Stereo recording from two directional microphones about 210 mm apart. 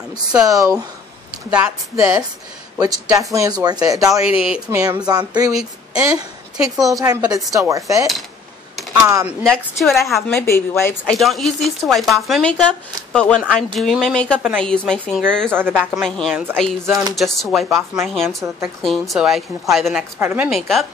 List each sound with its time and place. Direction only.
0.3 s speech: 10° right (ahead or behind)
4.4 s speech: 5° right (ahead or behind)
4.7 s a woman's voice: 20° right (ahead or behind)
9.0 s speech: 15° right (ahead or behind)
9.4 s speech: centre (ahead or behind)
11.1 s speech: centre (ahead or behind)
15.5 s speech: 10° right (ahead or behind)
18.3 s speech: 15° right (ahead or behind)
18.8 s speech: centre (ahead or behind)